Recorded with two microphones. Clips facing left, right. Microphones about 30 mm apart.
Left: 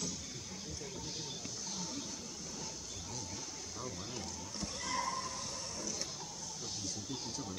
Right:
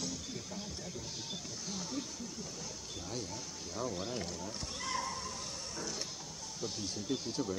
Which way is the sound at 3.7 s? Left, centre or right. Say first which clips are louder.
Right 8 dB; centre.